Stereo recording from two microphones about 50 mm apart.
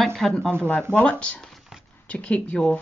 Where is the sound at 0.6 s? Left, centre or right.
Left.